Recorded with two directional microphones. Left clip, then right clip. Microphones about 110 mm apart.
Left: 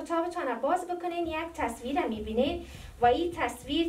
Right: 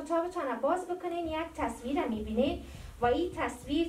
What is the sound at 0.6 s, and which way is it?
A woman's voice, 25° left (ahead or behind).